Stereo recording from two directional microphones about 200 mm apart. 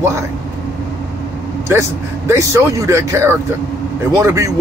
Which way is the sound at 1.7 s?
15° right (ahead or behind).